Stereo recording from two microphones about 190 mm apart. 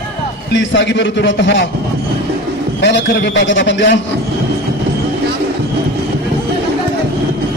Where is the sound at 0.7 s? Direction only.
70° left (ahead or behind).